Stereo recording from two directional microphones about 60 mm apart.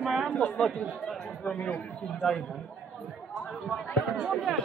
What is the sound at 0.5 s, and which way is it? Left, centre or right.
Speech, centre.